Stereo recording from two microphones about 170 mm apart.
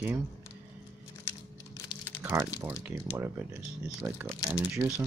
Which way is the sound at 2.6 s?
10° right (ahead or behind).